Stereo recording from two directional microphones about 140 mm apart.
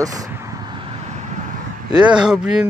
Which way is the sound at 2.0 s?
5° right (ahead or behind).